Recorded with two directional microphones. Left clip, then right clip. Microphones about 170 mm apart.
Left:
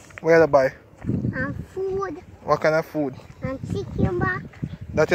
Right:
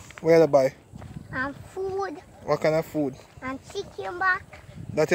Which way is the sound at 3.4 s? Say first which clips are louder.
Left 3 dB; 25° right (ahead or behind).